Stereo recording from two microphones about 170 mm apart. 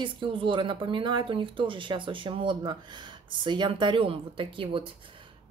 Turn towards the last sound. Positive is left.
turn(degrees=-30)  # may be behind; listen again after turning